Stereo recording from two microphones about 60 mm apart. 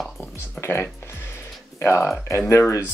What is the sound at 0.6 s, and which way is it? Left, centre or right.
Speech, left.